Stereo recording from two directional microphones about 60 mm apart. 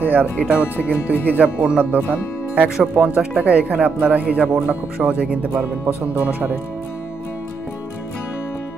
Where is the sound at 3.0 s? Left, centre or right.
Centre.